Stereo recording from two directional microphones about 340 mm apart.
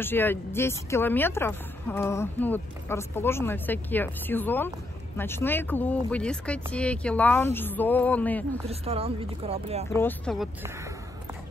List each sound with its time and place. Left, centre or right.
0.0 s speech: centre
8.6 s speech: centre
9.8 s speech: centre